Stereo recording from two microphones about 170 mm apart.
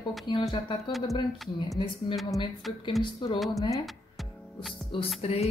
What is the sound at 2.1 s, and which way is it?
Speech, centre (ahead or behind).